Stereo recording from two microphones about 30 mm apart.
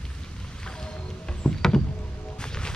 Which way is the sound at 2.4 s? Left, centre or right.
Left.